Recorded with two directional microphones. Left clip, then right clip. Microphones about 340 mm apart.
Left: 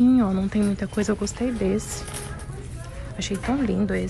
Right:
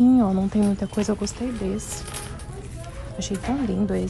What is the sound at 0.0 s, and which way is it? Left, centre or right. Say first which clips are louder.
Speech: right 1 dB; centre.